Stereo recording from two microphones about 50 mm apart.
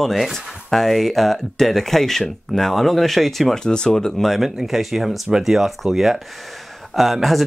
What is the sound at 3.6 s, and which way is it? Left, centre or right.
Speech, centre.